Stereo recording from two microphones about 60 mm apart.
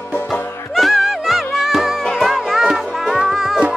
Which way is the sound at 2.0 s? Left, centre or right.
Centre.